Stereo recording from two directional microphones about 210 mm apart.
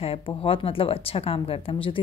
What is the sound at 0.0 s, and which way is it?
A woman's voice, 25° left (ahead or behind).